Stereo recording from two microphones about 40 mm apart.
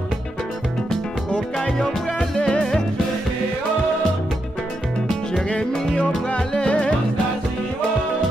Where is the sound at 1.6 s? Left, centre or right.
Centre.